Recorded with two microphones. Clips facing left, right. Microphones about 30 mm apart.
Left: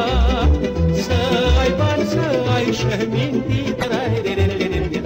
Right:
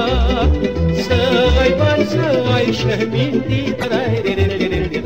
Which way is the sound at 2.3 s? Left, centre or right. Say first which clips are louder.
Right 3 dB; right.